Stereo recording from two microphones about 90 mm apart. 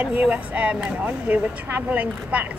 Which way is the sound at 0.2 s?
15° right (ahead or behind).